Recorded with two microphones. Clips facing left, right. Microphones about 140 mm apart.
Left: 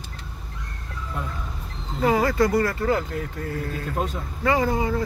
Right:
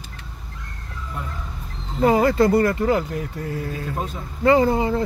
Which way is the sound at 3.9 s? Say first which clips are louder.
Left 2 dB; 5° right (ahead or behind).